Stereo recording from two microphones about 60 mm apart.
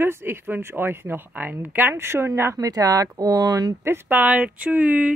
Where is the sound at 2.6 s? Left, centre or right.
Right.